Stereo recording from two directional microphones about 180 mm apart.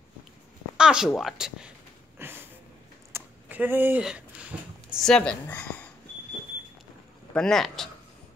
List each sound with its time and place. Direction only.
0.7 s speech: 5° right (ahead or behind)
2.1 s a sound: 10° right (ahead or behind)
5.0 s speech: 5° left (ahead or behind)
7.3 s speech: 5° left (ahead or behind)